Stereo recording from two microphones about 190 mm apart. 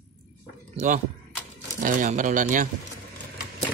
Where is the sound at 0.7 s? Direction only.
40° right (ahead or behind).